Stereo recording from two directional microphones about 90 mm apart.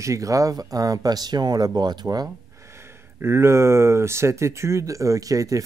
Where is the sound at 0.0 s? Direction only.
35° right (ahead or behind).